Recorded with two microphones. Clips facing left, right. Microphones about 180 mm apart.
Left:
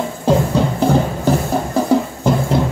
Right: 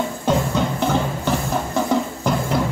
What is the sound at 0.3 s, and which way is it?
Music, 35° left (ahead or behind).